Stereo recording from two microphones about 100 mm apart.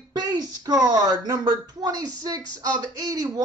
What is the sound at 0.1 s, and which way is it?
Speech, 40° right (ahead or behind).